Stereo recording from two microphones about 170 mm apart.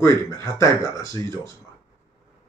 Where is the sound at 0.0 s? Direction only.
15° left (ahead or behind).